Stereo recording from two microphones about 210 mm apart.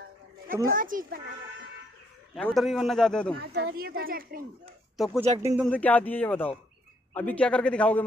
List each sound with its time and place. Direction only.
0.5 s speech: 15° right (ahead or behind)
0.7 s a child's voice: 40° right (ahead or behind)
2.3 s a man's voice: centre (ahead or behind)
3.7 s speech: 45° right (ahead or behind)
4.9 s speech: centre (ahead or behind)
5.4 s speech: 15° right (ahead or behind)
5.7 s a man's voice: 5° left (ahead or behind)